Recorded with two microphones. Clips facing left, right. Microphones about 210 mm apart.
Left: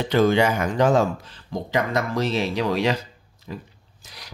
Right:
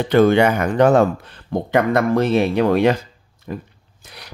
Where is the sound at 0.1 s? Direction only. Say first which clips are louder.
Right 5 dB; 60° right (ahead or behind).